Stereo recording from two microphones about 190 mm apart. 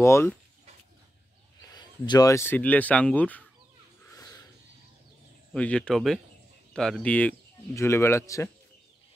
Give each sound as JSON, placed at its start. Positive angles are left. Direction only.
{"t": 0.0, "sound": "speech", "side_deg": 15}
{"t": 1.6, "sound": "speech", "side_deg": 20}
{"t": 4.1, "sound": "a sound", "side_deg": 20}
{"t": 5.5, "sound": "speech", "side_deg": 5}